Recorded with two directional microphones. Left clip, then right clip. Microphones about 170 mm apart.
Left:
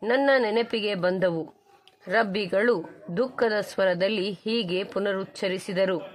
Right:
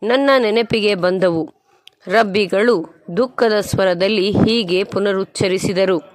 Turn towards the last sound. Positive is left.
turn(degrees=-35)  # may be behind; listen again after turning